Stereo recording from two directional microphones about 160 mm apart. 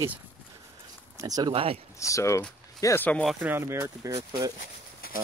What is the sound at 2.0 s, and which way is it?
Speech, 20° left (ahead or behind).